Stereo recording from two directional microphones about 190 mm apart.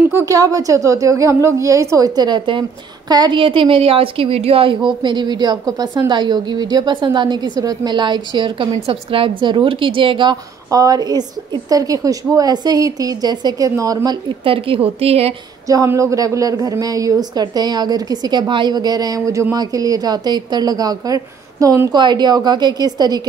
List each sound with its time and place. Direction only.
0.1 s a woman's voice: 15° right (ahead or behind); by 15.3 s 30° right (ahead or behind)
15.7 s a woman's voice: 15° right (ahead or behind)